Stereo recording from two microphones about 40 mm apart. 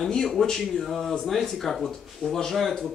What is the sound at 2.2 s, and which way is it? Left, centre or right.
Speech, right.